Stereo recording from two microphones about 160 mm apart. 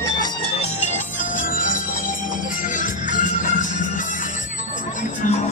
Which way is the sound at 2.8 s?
55° left (ahead or behind).